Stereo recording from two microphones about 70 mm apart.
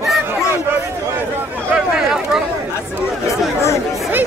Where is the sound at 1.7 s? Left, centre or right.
Centre.